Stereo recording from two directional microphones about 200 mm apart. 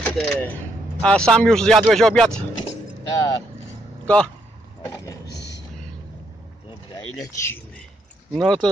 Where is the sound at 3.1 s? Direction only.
15° left (ahead or behind).